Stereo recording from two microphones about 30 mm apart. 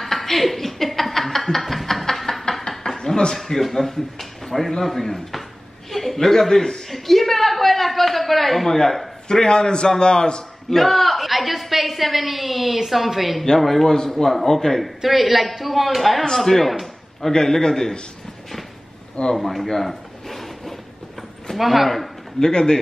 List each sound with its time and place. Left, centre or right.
0.0 s a sound: centre
2.7 s a sound: left
3.3 s a man's voice: centre
6.9 s a sound: centre
8.6 s a man's voice: centre
10.7 s a woman's voice: centre
13.6 s speech: centre
15.0 s a woman's voice: centre
17.3 s a man's voice: left
19.3 s a sound: centre
21.5 s a woman's voice: centre
22.4 s a man's voice: left